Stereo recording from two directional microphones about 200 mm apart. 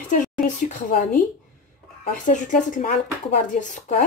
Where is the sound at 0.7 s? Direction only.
40° left (ahead or behind).